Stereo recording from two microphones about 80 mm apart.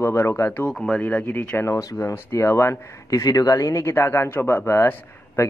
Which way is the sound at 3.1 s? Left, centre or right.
Left.